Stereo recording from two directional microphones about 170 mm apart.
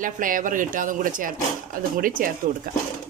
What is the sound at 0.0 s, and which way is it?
Speech, 55° right (ahead or behind).